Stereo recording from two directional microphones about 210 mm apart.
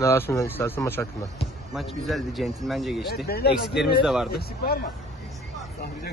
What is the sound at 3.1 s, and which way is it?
Speech, 50° left (ahead or behind).